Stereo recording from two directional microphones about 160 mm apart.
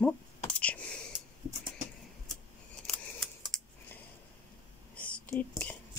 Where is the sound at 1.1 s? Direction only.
25° right (ahead or behind).